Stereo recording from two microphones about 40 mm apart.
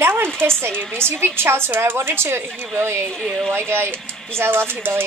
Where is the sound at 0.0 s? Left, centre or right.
Right.